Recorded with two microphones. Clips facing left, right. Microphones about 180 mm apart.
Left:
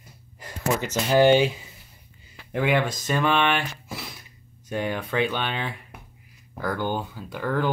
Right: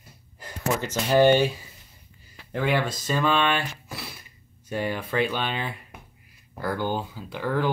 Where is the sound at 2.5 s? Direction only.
5° left (ahead or behind).